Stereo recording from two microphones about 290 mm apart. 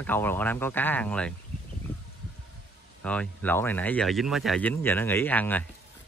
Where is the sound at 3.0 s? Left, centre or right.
Centre.